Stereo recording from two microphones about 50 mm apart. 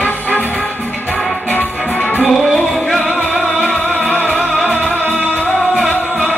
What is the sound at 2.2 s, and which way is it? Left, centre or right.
Music, centre.